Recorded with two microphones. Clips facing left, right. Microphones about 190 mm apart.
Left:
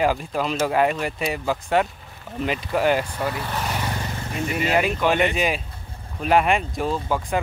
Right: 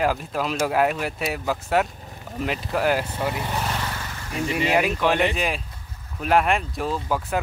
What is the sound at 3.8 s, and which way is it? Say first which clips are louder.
Vehicle: left 4 dB; 20° left (ahead or behind).